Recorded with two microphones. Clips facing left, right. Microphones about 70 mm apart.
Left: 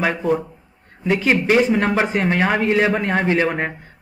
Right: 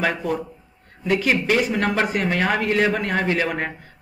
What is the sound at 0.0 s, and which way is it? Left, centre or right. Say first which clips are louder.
A man's voice: left 4 dB; centre.